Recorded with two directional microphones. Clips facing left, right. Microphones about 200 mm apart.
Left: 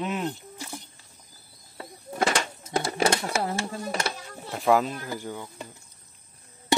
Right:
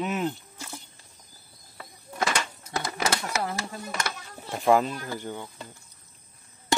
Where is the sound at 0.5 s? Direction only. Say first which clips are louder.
Left 3 dB; 15° left (ahead or behind).